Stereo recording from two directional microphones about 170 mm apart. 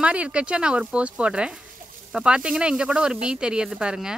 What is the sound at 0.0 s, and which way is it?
Speech, 5° right (ahead or behind).